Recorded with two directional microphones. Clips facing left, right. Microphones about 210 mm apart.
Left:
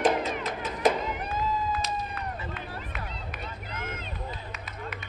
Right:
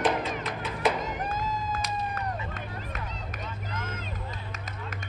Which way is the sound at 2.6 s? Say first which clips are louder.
Right 1 dB; 45° right (ahead or behind).